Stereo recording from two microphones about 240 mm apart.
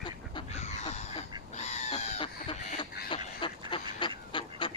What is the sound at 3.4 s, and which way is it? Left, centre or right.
Duck, left.